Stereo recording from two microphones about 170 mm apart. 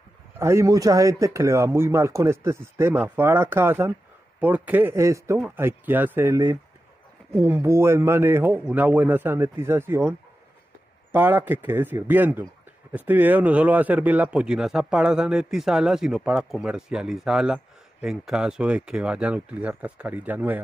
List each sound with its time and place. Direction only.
0.4 s speech: 15° right (ahead or behind)